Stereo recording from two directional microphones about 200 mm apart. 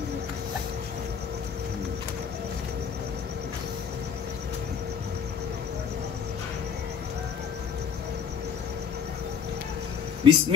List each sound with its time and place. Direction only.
10.2 s speech: 25° right (ahead or behind)